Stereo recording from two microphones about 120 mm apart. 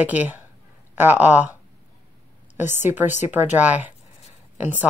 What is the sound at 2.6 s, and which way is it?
Speech, 20° right (ahead or behind).